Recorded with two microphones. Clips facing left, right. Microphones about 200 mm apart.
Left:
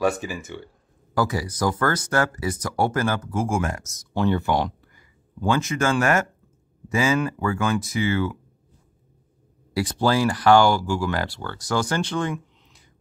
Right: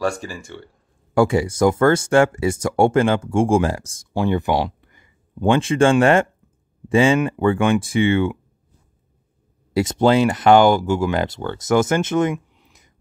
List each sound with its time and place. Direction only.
1.1 s speech: 25° right (ahead or behind)
4.1 s speech: 10° right (ahead or behind)
4.8 s a sound: 20° right (ahead or behind)
6.9 s speech: 30° right (ahead or behind)
9.8 s speech: 20° right (ahead or behind)